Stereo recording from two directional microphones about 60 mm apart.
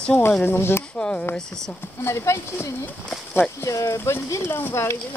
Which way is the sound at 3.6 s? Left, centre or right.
Left.